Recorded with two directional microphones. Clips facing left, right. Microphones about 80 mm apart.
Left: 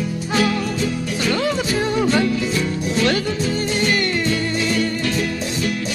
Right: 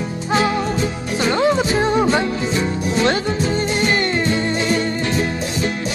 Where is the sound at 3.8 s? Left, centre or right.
Right.